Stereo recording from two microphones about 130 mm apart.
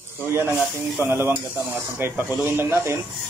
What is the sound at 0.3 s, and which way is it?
Speech, 20° right (ahead or behind).